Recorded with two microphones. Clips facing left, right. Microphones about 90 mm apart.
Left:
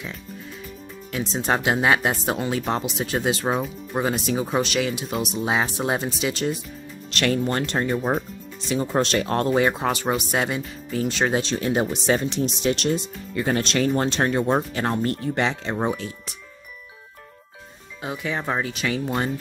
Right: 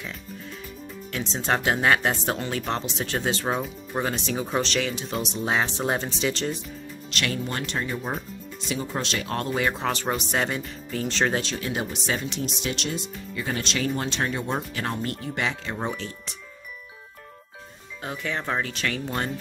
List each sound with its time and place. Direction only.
1.1 s speech: 10° left (ahead or behind)
7.1 s speech: 45° left (ahead or behind)
9.8 s speech: 10° left (ahead or behind)
11.4 s speech: 35° left (ahead or behind)
12.8 s speech: 50° left (ahead or behind); by 15.9 s 30° left (ahead or behind)
15.9 s speech: 5° left (ahead or behind)
18.0 s speech: 10° left (ahead or behind)